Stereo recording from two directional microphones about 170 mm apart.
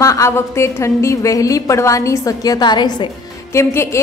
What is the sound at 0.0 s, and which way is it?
A woman's voice, 20° left (ahead or behind).